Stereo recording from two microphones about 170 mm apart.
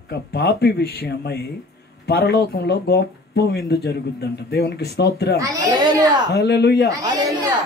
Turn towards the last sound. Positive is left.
turn(degrees=-20)  # may be behind; listen again after turning